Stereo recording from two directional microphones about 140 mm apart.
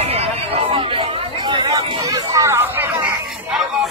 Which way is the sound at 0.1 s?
40° right (ahead or behind).